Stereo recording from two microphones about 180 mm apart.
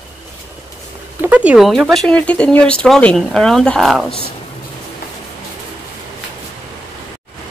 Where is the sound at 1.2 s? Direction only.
10° right (ahead or behind).